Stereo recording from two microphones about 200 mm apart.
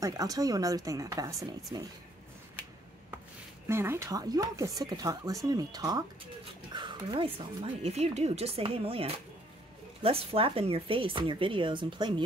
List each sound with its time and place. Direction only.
0.0 s speech: 15° right (ahead or behind)
3.6 s speech: 10° right (ahead or behind)